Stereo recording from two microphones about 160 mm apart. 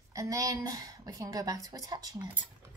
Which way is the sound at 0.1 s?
20° right (ahead or behind).